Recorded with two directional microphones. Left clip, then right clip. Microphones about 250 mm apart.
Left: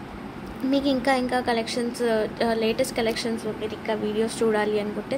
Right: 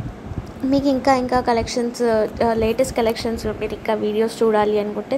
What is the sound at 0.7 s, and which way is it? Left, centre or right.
A woman's voice, centre.